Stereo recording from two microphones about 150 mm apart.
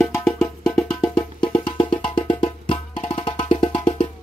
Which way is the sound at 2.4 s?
40° left (ahead or behind).